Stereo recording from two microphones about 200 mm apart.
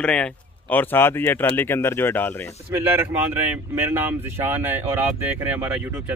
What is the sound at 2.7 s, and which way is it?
Speech, 10° right (ahead or behind).